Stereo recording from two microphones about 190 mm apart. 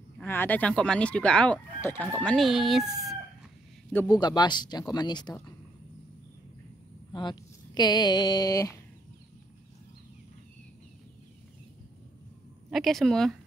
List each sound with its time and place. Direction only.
0.2 s speech: 10° left (ahead or behind)
4.1 s speech: 20° left (ahead or behind)
7.1 s speech: 25° left (ahead or behind)
12.6 s speech: centre (ahead or behind)